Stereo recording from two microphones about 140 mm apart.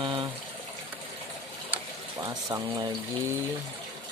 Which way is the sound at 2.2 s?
25° right (ahead or behind).